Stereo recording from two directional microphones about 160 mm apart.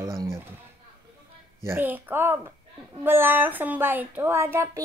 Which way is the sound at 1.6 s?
15° right (ahead or behind).